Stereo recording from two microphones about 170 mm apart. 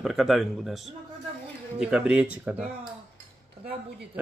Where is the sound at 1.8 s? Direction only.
5° right (ahead or behind).